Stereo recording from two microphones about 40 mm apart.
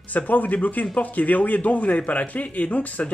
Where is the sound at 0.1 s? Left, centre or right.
Left.